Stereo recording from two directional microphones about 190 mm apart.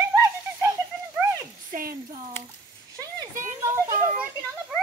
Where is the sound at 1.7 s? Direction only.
50° right (ahead or behind).